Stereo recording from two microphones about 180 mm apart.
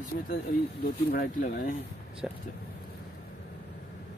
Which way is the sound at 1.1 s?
50° left (ahead or behind).